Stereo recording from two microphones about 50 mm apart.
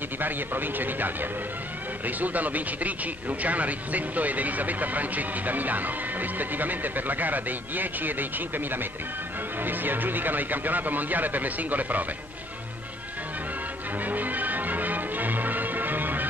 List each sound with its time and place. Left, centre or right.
0.2 s speech: right
14.0 s music: right